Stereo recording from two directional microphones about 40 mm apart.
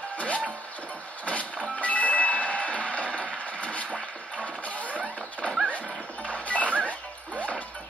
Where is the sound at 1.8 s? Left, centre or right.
Left.